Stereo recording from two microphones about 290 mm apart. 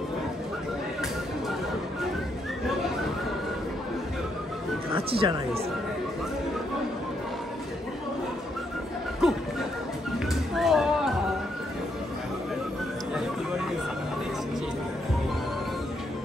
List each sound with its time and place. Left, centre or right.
4.9 s speech: centre
9.2 s music: centre